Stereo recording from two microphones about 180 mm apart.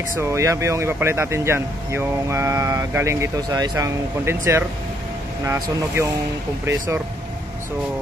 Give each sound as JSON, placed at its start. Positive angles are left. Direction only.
{"t": 0.2, "sound": "speech", "side_deg": -15}
{"t": 6.6, "sound": "speech", "side_deg": -15}